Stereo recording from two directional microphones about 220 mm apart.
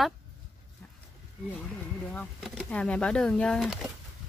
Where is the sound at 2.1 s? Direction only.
5° left (ahead or behind).